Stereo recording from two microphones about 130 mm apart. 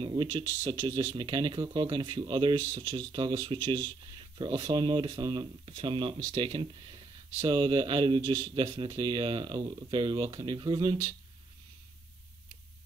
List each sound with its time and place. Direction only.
0.0 s speech: 40° right (ahead or behind)